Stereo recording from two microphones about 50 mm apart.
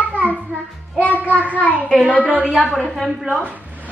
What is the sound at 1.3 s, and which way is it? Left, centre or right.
Speech, left.